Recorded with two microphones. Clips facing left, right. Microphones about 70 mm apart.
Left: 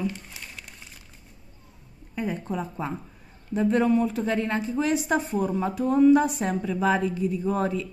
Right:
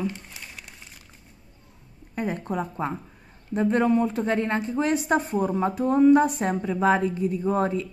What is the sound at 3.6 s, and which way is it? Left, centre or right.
Speech, right.